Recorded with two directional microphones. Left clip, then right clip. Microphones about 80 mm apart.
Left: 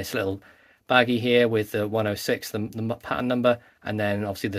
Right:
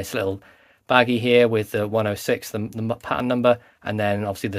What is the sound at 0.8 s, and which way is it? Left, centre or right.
Speech, right.